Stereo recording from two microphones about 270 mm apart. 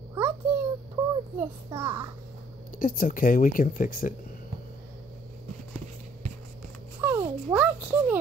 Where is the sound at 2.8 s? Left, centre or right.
Left.